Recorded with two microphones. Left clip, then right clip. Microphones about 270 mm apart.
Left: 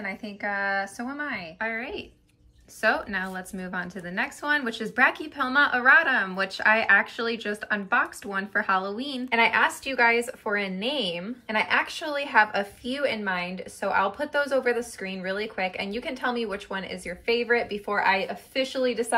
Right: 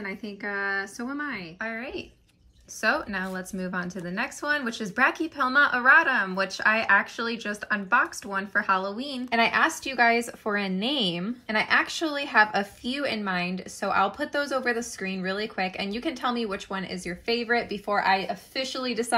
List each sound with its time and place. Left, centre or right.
0.0 s a woman's voice: centre; by 19.0 s right